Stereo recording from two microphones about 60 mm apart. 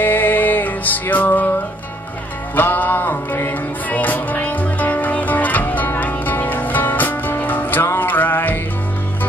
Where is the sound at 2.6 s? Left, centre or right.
Left.